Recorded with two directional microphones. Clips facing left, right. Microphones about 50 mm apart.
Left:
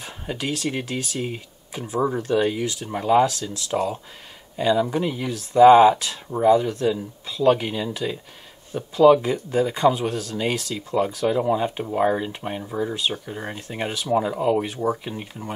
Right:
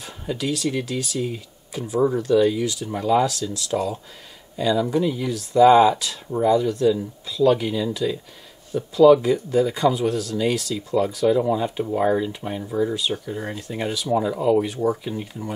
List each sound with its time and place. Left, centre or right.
0.0 s speech: left
14.8 s speech: centre